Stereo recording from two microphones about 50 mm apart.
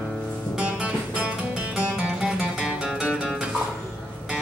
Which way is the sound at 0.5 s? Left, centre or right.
Right.